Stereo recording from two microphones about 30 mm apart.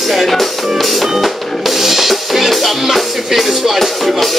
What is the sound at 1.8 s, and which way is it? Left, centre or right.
Music, centre.